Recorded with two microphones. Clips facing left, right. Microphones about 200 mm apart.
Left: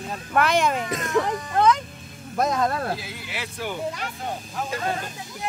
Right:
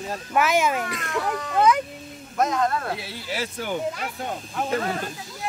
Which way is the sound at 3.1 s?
40° right (ahead or behind).